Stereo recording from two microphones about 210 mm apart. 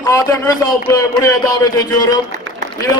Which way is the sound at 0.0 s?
15° left (ahead or behind).